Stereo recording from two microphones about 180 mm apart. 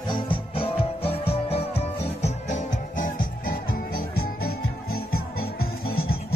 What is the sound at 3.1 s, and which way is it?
Music, 55° left (ahead or behind).